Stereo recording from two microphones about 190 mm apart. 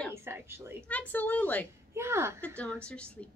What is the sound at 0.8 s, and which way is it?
Speech, 10° left (ahead or behind).